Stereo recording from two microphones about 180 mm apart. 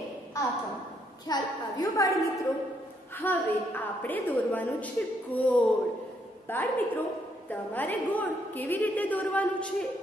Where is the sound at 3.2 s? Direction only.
10° left (ahead or behind).